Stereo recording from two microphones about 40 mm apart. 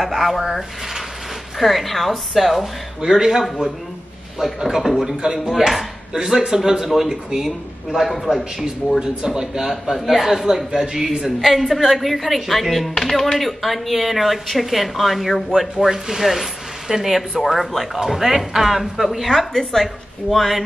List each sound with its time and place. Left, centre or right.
0.0 s a woman's voice: centre
1.6 s a woman's voice: centre
3.2 s speech: centre
5.5 s a woman's voice: centre
9.0 s a woman's voice: centre